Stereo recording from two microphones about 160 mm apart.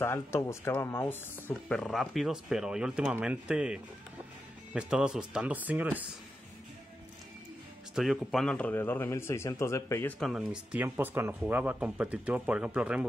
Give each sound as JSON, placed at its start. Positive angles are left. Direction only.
{"t": 0.0, "sound": "speech", "side_deg": 15}
{"t": 1.7, "sound": "a man's voice", "side_deg": 0}
{"t": 7.9, "sound": "a man's voice", "side_deg": 0}